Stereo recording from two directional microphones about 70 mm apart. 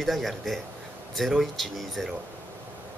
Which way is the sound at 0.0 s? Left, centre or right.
Centre.